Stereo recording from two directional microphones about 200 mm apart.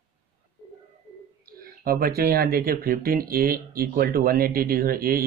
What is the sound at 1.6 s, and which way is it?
Speech, 50° right (ahead or behind).